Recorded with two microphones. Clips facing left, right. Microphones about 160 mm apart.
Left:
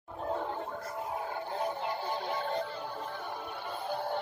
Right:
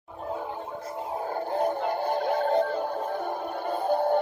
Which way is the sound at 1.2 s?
45° right (ahead or behind).